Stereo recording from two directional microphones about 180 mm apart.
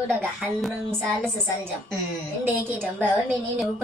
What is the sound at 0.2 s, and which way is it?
Speech, centre (ahead or behind).